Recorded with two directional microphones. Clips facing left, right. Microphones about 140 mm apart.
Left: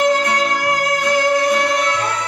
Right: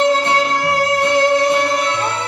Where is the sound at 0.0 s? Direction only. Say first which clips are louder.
Right 1 dB; 25° right (ahead or behind).